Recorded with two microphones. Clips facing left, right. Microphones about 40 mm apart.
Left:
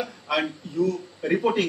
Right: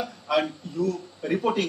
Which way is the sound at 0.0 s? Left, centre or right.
Centre.